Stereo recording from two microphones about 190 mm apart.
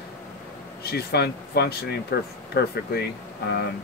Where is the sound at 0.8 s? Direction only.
55° left (ahead or behind).